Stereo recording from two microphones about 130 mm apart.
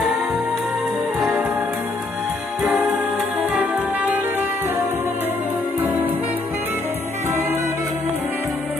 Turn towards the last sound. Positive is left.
turn(degrees=-15)  # may be behind; listen again after turning